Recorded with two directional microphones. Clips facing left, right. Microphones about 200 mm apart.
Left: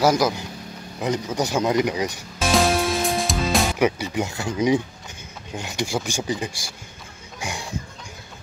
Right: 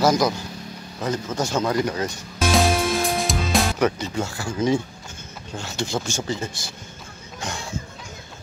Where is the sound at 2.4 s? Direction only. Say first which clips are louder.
Even; centre (ahead or behind).